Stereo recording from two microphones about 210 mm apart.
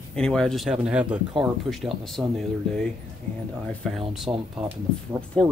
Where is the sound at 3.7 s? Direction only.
Centre (ahead or behind).